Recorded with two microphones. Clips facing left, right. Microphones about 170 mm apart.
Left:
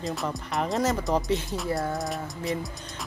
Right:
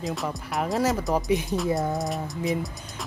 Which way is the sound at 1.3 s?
15° right (ahead or behind).